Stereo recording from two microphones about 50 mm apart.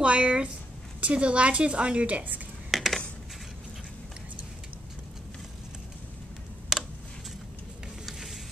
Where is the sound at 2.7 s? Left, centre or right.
Centre.